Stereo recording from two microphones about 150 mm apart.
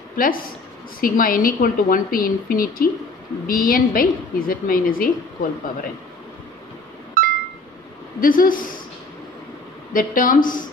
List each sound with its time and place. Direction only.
0.1 s a woman's voice: 70° left (ahead or behind)
7.2 s a sound: 65° right (ahead or behind)
8.2 s a woman's voice: 65° left (ahead or behind)
9.9 s speech: 65° left (ahead or behind)